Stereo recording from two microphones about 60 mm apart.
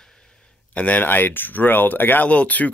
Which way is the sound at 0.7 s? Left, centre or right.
Left.